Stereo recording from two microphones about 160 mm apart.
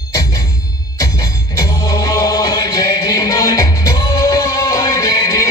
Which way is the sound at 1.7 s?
20° left (ahead or behind).